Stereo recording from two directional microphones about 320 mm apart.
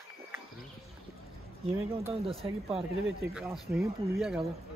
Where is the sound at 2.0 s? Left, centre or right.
Centre.